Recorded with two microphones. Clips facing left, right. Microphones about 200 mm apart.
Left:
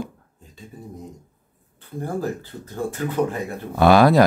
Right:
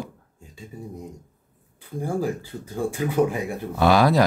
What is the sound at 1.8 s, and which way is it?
Speech, 10° right (ahead or behind).